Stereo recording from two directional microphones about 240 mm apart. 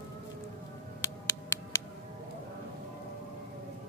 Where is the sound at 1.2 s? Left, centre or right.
Centre.